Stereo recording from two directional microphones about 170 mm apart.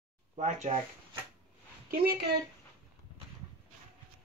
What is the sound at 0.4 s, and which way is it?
Speech, 45° right (ahead or behind).